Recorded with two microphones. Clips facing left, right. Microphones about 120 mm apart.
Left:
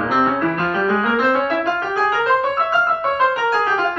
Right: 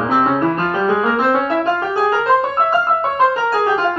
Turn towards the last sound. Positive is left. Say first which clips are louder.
# right 2 dB
turn(degrees=-30)  # may be behind; listen again after turning